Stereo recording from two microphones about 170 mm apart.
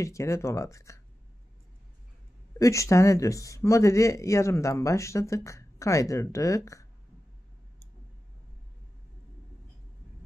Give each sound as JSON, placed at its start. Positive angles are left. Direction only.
{"t": 0.0, "sound": "speech", "side_deg": 15}
{"t": 2.6, "sound": "speech", "side_deg": 15}